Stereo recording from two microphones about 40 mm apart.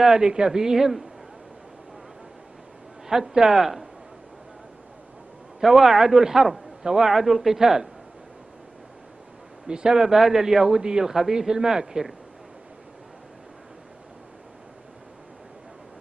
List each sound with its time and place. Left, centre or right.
0.0 s a man's voice: centre
3.1 s a man's voice: centre
5.6 s a man's voice: centre
9.7 s speech: right
9.9 s a man's voice: centre